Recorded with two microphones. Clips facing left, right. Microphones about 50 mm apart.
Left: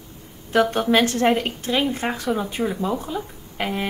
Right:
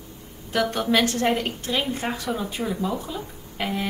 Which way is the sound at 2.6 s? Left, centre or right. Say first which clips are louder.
Left 3 dB; left.